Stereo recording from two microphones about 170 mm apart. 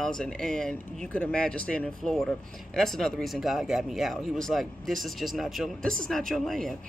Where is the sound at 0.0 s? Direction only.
5° left (ahead or behind).